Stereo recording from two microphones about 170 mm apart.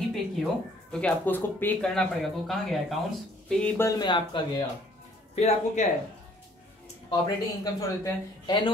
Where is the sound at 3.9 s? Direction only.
25° left (ahead or behind).